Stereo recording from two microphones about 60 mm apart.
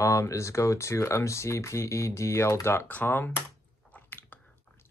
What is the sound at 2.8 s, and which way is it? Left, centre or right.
Speech, left.